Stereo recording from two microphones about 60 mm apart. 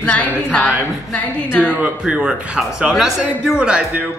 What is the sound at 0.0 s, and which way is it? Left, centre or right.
Speech, left.